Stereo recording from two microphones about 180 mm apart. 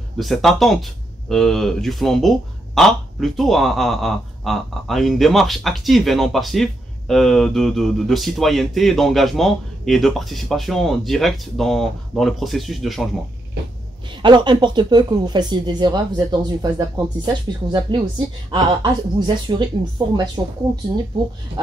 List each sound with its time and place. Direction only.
0.2 s speech: centre (ahead or behind)
14.2 s speech: 25° right (ahead or behind)